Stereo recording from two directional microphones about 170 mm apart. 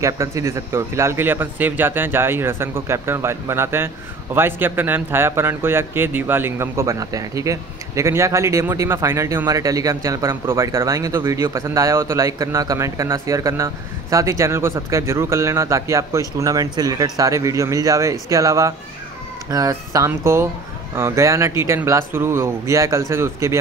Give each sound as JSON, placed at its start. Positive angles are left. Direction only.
{"t": 0.0, "sound": "speech", "side_deg": -15}